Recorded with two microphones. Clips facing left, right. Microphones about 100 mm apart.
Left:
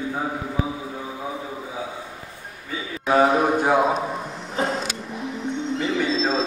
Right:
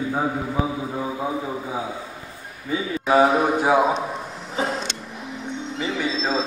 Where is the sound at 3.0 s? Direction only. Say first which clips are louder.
Even; centre (ahead or behind).